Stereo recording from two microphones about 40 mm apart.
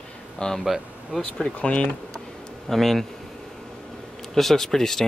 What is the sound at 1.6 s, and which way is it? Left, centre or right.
Speech, left.